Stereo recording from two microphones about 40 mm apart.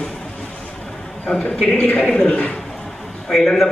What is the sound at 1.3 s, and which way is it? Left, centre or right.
Speech, left.